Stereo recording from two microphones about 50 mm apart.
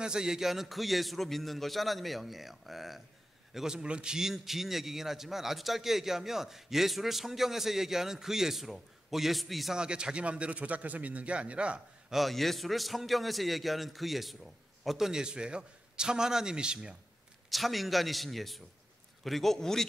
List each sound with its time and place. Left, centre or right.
0.0 s a man's voice: centre
3.5 s a man's voice: centre
9.8 s speech: centre
12.1 s a man's voice: centre
17.5 s a man's voice: centre